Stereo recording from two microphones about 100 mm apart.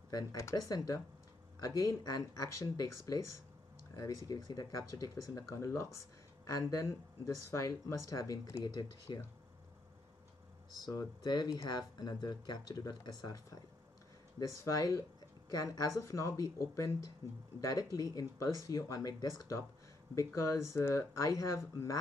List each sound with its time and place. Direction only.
0.1 s speech: 35° left (ahead or behind)
9.1 s speech: 50° left (ahead or behind)
10.9 s speech: 40° left (ahead or behind)
14.4 s speech: 35° left (ahead or behind)